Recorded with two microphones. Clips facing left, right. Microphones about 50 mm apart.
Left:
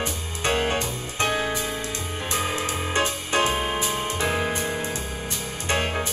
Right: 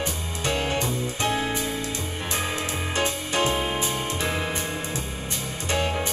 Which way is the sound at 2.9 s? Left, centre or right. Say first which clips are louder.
Left 2 dB; left.